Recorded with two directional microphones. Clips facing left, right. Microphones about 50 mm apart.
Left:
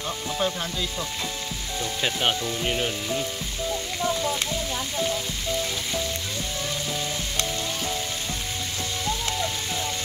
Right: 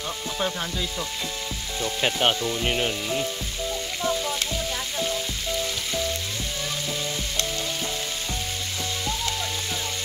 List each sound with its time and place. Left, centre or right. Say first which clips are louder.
0.4 s frying: left 1 dB; centre
1.8 s sizzle: right 3 dB; centre
2.6 s frying: right 1 dB; centre